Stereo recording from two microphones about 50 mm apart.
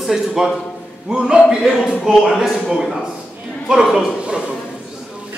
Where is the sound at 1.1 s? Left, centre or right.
Centre.